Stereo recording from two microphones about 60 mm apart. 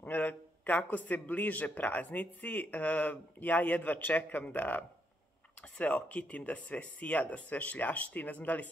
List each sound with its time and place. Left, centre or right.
0.0 s a man's voice: left